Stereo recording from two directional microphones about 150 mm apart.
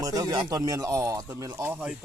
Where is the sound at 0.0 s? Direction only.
25° right (ahead or behind).